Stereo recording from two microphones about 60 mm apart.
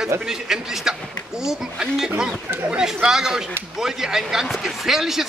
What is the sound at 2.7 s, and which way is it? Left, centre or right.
Chatter, centre.